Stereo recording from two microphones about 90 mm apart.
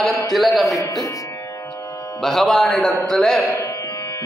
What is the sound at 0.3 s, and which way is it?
Speech, centre (ahead or behind).